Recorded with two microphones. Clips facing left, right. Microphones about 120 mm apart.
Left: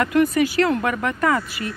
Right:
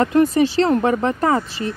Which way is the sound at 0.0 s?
30° right (ahead or behind).